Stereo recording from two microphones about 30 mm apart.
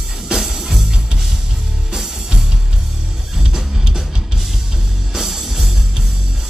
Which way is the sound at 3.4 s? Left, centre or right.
Right.